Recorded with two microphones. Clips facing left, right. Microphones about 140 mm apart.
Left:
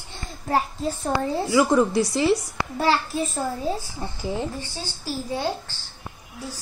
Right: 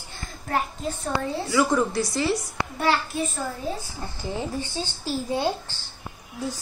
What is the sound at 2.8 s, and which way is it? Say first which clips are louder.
Speech: left 2 dB; 30° left (ahead or behind).